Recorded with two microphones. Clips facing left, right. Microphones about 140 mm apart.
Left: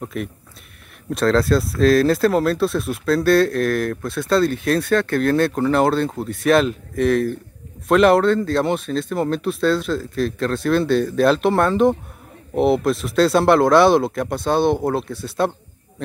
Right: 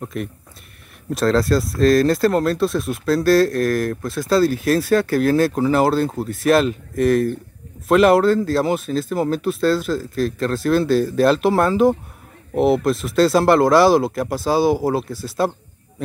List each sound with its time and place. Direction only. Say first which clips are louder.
0.0 s speech: even; centre (ahead or behind)